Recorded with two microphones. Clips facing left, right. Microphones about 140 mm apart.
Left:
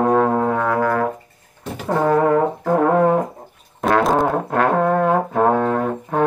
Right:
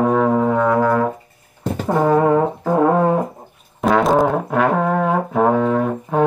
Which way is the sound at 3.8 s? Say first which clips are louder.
Right 2 dB; centre (ahead or behind).